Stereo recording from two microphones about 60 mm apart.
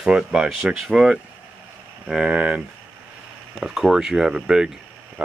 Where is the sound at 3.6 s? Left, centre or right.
Centre.